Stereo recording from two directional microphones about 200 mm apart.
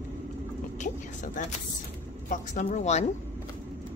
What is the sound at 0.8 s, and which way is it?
A woman's voice, 40° left (ahead or behind).